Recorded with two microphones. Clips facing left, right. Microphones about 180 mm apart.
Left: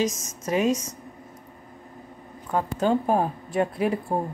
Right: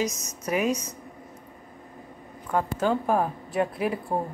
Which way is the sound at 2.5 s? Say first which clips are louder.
Left 2 dB; 20° left (ahead or behind).